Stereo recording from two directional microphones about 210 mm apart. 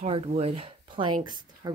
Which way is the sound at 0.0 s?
30° right (ahead or behind).